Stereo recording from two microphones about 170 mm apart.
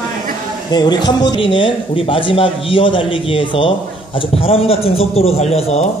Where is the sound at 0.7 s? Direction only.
25° left (ahead or behind).